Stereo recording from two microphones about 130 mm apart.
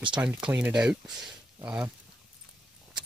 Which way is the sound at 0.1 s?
10° right (ahead or behind).